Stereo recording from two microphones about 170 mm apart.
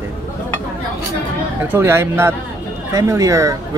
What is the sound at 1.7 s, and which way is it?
Speech, 15° right (ahead or behind).